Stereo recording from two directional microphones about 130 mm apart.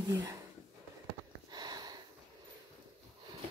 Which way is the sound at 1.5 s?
30° right (ahead or behind).